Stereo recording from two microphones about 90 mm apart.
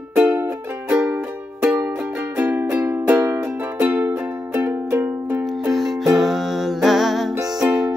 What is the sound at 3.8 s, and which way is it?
Music, 20° right (ahead or behind).